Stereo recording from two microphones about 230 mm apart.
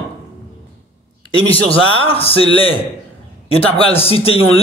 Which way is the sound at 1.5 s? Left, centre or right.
Left.